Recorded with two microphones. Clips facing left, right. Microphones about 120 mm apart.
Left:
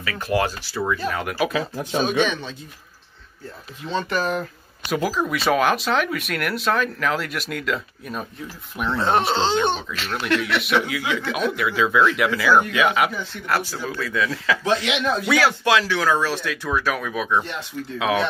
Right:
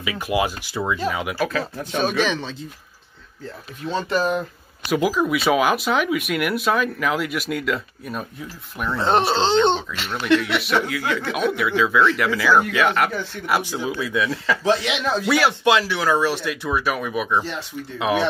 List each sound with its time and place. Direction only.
0.0 s speech: 10° right (ahead or behind)
1.0 s speech: 5° right (ahead or behind)
1.4 s speech: 15° left (ahead or behind)
2.1 s speech: 90° right
4.1 s speech: 30° right (ahead or behind)
4.8 s speech: 5° right (ahead or behind)
9.3 s speech: 10° left (ahead or behind)
9.8 s speech: centre (ahead or behind)
13.5 s speech: 15° right (ahead or behind)